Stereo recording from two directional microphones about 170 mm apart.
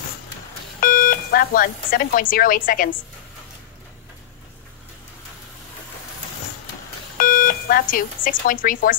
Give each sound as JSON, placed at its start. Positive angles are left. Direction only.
{"t": 0.7, "sound": "speech", "side_deg": 55}
{"t": 7.2, "sound": "speech", "side_deg": 55}